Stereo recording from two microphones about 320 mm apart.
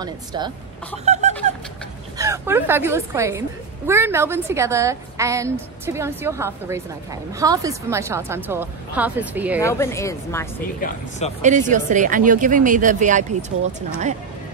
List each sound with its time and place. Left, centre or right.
0.0 s speech: centre
1.0 s a sound: right
2.1 s speech: centre
9.6 s speech: centre
10.8 s speech: left
11.4 s a woman's voice: right